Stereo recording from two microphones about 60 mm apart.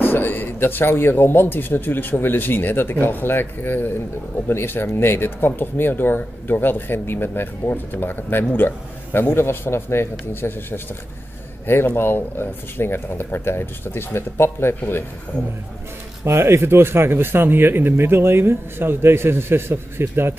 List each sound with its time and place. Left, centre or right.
0.0 s speech: left
16.3 s speech: right